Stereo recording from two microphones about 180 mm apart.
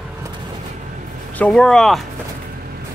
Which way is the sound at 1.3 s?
5° left (ahead or behind).